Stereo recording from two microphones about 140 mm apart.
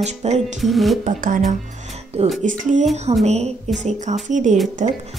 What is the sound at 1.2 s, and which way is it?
A woman's voice, 65° right (ahead or behind).